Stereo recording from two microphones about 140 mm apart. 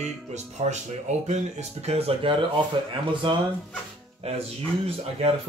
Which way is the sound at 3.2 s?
35° right (ahead or behind).